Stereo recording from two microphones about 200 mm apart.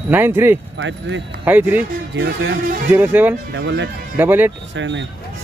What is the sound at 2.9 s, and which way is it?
Speech, 10° right (ahead or behind).